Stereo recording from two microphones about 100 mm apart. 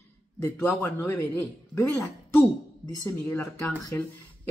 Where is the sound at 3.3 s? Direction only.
30° left (ahead or behind).